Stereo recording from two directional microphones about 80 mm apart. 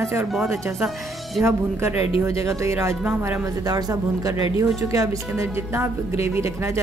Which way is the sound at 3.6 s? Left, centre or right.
Right.